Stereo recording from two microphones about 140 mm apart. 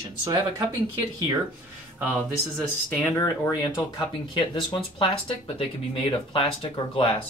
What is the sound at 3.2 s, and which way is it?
Speech, 25° left (ahead or behind).